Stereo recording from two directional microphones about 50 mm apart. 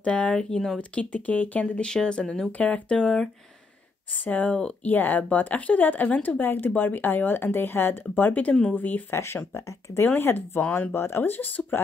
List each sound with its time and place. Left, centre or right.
0.0 s speech: left
0.7 s speech: left
1.8 s speech: centre
4.1 s speech: left
9.1 s speech: left
10.0 s speech: left